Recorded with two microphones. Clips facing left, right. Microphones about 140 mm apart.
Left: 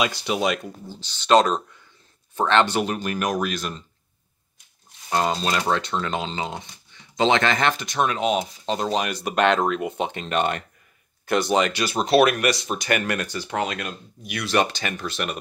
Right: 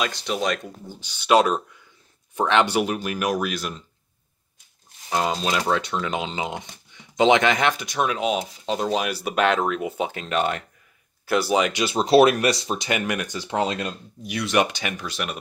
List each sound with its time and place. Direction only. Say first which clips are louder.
0.0 s speech: left 2 dB; 5° left (ahead or behind)
0.8 s speech: even; 10° right (ahead or behind)
5.1 s speech: left 1 dB; 5° right (ahead or behind)
11.7 s speech: right 2 dB; 20° right (ahead or behind)
12.9 s speech: left 2 dB; 15° right (ahead or behind)
14.5 s speech: even; 15° right (ahead or behind)